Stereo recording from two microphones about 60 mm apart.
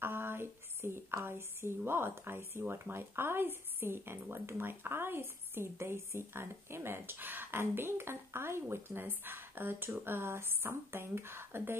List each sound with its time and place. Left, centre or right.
0.0 s speech: right